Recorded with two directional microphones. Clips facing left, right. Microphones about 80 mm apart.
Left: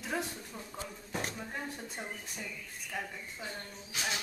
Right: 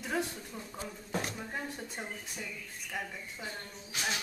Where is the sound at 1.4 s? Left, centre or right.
Centre.